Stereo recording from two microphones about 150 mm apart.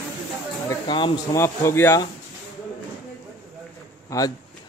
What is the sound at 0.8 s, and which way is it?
Speech, 30° left (ahead or behind).